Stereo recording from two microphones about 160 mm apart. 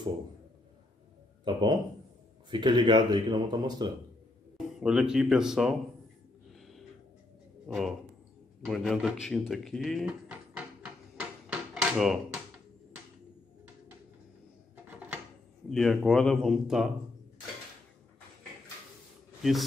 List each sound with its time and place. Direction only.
1.4 s speech: 30° right (ahead or behind)
4.7 s speech: 5° right (ahead or behind)
6.5 s a sound: centre (ahead or behind)
7.6 s a man's voice: centre (ahead or behind)
10.3 s drawer open or close: 10° right (ahead or behind)
14.9 s a sound: 10° right (ahead or behind)
15.7 s speech: centre (ahead or behind)